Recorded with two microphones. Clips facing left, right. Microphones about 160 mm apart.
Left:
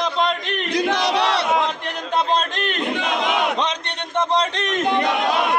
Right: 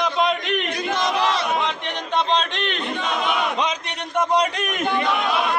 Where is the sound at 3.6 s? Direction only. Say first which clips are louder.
Left 1 dB; 5° right (ahead or behind).